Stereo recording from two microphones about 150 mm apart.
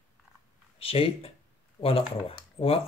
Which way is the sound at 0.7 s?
40° left (ahead or behind).